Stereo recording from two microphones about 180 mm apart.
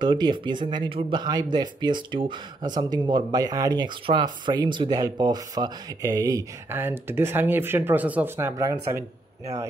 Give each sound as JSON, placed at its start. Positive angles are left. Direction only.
{"t": 0.0, "sound": "speech", "side_deg": -25}